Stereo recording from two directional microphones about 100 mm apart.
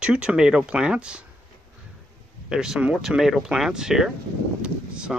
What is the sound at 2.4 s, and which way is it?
Speech, 5° right (ahead or behind).